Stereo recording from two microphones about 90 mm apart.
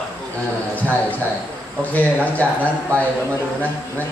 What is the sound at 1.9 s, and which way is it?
Speech, 15° left (ahead or behind).